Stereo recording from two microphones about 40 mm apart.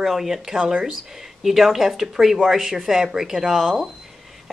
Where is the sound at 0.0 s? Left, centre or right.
Centre.